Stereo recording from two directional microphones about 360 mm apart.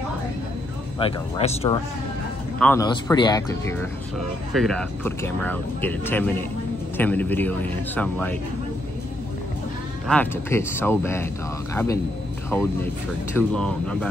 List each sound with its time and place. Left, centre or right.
0.9 s speech: centre
10.0 s speech: centre